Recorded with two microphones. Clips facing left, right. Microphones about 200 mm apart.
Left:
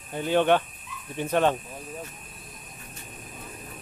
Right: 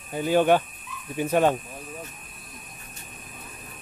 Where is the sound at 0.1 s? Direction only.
5° right (ahead or behind).